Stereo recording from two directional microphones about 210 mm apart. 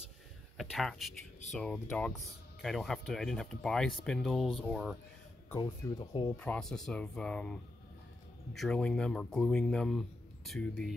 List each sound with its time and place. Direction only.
0.6 s a man's voice: centre (ahead or behind)
5.5 s speech: 15° left (ahead or behind)
6.3 s a man's voice: 5° left (ahead or behind)